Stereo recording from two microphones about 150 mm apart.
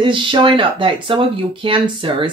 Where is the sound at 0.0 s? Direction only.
35° right (ahead or behind).